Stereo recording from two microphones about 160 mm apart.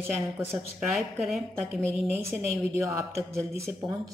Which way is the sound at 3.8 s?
30° right (ahead or behind).